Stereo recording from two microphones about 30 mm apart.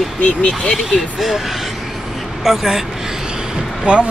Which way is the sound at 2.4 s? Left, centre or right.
Centre.